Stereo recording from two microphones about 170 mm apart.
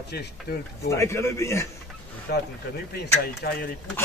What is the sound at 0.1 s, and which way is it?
Speech, 75° left (ahead or behind).